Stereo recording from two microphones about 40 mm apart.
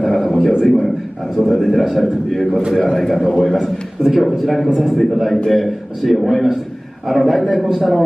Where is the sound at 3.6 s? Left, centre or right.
Centre.